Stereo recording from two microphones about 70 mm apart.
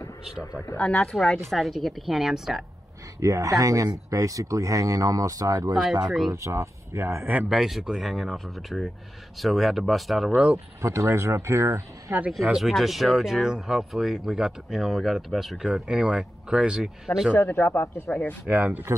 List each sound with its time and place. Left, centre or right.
0.7 s speech: centre
1.5 s speech: centre
3.2 s speech: right
6.0 s speech: centre
6.3 s speech: right
7.5 s speech: centre
10.3 s speech: centre
10.8 s speech: right
12.5 s speech: centre
17.5 s speech: left
18.5 s speech: right